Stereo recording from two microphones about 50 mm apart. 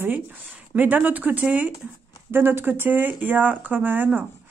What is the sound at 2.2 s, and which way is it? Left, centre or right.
A woman's voice, right.